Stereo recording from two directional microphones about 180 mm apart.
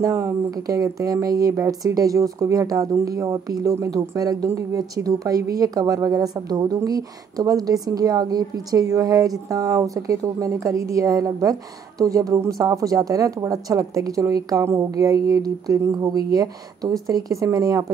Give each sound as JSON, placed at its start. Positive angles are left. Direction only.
{"t": 0.0, "sound": "speech", "side_deg": -20}